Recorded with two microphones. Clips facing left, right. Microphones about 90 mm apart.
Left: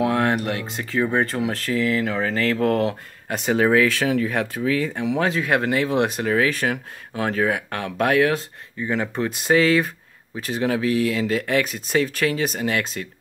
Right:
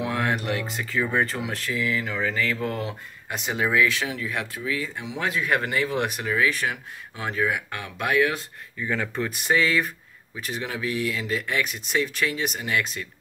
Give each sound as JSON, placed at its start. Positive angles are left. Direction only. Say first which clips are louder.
{"t": 0.0, "sound": "a sound", "louder": "left 6 dB", "side_deg": 45}
{"t": 1.1, "sound": "speech", "louder": "left 4 dB", "side_deg": 40}
{"t": 5.2, "sound": "speech", "louder": "left 2 dB", "side_deg": 30}
{"t": 6.2, "sound": "speech", "louder": "left 4 dB", "side_deg": 45}
{"t": 8.7, "sound": "speech", "louder": "left 3 dB", "side_deg": 20}
{"t": 9.5, "sound": "speech", "louder": "left 5 dB", "side_deg": 40}